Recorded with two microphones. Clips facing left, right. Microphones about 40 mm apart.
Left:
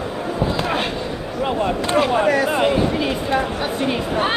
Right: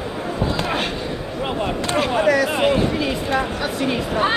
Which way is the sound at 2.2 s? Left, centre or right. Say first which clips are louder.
Even; left.